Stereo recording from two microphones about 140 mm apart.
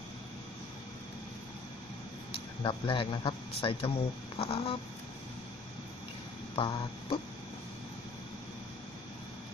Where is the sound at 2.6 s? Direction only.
35° left (ahead or behind).